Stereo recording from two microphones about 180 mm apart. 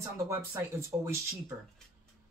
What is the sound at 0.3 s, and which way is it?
Speech, 15° right (ahead or behind).